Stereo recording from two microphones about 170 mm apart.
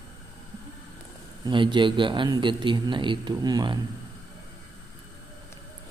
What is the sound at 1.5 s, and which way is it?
Speech, 25° right (ahead or behind).